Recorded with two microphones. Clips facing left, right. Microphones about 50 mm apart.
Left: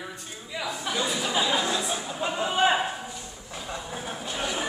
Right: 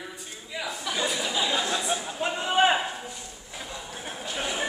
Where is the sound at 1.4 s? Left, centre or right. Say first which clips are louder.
Left 3 dB; centre.